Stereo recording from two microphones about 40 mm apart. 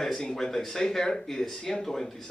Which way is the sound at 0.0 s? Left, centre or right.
Centre.